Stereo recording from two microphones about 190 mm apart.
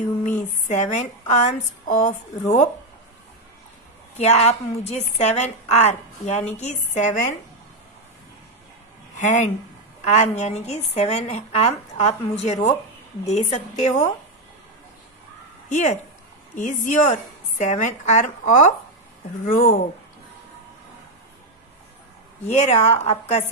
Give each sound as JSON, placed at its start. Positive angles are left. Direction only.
{"t": 0.0, "sound": "speech", "side_deg": 40}
{"t": 4.2, "sound": "a woman's voice", "side_deg": 35}
{"t": 9.1, "sound": "a woman's voice", "side_deg": 40}
{"t": 15.7, "sound": "a woman's voice", "side_deg": 40}
{"t": 22.5, "sound": "a woman's voice", "side_deg": 35}